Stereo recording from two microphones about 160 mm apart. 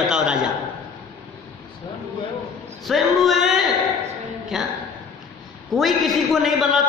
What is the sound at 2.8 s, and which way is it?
A woman's voice, centre (ahead or behind).